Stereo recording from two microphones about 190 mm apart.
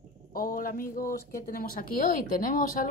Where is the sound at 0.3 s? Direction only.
50° left (ahead or behind).